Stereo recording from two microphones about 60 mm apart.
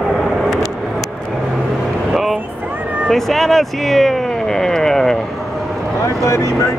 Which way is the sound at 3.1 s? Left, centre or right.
Centre.